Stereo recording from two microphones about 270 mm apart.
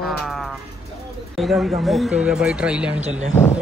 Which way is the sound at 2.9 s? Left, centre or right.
Right.